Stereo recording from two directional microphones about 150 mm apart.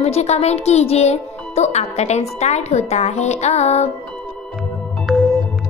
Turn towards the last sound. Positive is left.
turn(degrees=0)  # may be behind; listen again after turning